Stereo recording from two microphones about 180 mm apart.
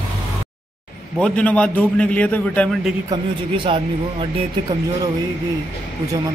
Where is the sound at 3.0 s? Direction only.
30° right (ahead or behind).